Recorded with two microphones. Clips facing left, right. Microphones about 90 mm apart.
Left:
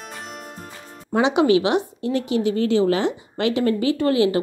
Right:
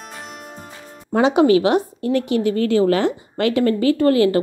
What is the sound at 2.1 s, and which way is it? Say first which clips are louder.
A woman's voice: right 3 dB; 55° right (ahead or behind).